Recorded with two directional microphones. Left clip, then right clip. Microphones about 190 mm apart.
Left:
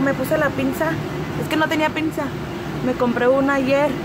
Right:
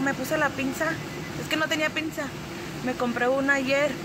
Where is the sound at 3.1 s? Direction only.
5° right (ahead or behind).